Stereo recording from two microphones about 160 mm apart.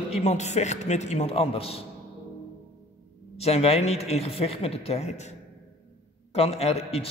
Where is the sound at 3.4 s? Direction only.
40° left (ahead or behind).